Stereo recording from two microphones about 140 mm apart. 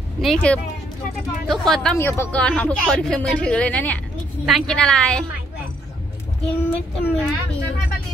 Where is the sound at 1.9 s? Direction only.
15° left (ahead or behind).